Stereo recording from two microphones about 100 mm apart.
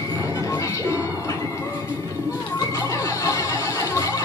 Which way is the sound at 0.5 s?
30° left (ahead or behind).